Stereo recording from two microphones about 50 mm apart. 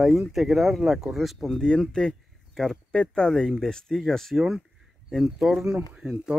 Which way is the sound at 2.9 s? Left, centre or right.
Centre.